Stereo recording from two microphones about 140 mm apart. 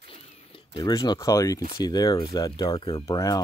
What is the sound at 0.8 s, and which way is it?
Speech, 30° left (ahead or behind).